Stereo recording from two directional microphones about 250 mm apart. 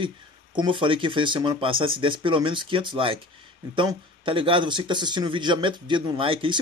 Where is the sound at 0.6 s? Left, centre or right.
Centre.